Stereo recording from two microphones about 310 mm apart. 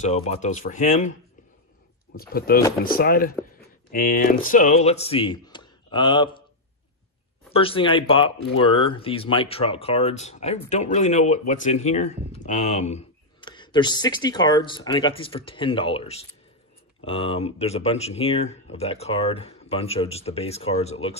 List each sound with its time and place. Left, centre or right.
0.0 s speech: left
2.1 s speech: left
7.5 s speech: centre